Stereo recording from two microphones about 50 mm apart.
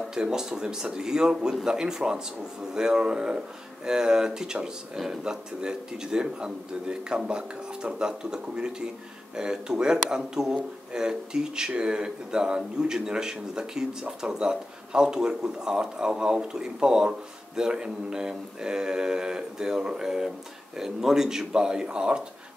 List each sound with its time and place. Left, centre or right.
0.1 s speech: centre